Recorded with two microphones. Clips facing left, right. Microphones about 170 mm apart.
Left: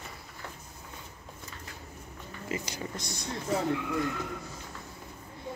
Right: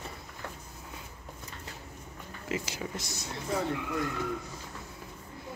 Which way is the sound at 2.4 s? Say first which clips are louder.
Right 1 dB; 5° right (ahead or behind).